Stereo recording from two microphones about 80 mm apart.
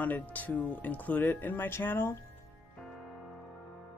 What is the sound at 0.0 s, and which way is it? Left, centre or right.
Speech, left.